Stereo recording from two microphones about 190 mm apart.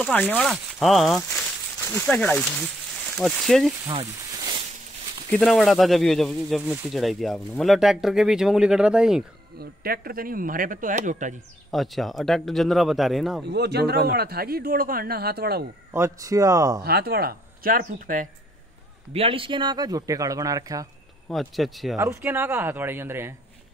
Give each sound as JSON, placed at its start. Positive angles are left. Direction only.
{"t": 0.0, "sound": "speech", "side_deg": 10}
{"t": 3.9, "sound": "a sound", "side_deg": -30}
{"t": 5.3, "sound": "speech", "side_deg": 0}
{"t": 9.6, "sound": "speech", "side_deg": -50}
{"t": 11.7, "sound": "speech", "side_deg": 0}
{"t": 13.5, "sound": "speech", "side_deg": -60}
{"t": 15.9, "sound": "speech", "side_deg": -15}
{"t": 16.8, "sound": "speech", "side_deg": -55}
{"t": 19.1, "sound": "speech", "side_deg": -30}
{"t": 21.3, "sound": "speech", "side_deg": 0}
{"t": 21.9, "sound": "speech", "side_deg": -15}